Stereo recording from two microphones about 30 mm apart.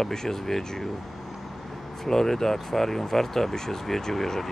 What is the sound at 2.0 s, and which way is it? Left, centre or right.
Speech, centre.